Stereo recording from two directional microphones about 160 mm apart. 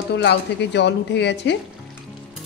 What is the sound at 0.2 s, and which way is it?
A woman's voice, 90° left.